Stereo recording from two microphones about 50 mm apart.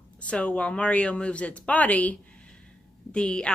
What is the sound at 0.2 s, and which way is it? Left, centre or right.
Speech, left.